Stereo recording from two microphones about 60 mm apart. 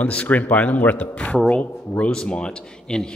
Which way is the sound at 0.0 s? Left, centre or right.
Left.